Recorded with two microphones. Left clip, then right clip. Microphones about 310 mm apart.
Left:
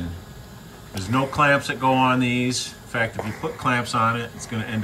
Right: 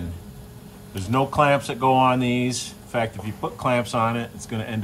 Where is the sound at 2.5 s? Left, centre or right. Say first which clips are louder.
Left 2 dB; right.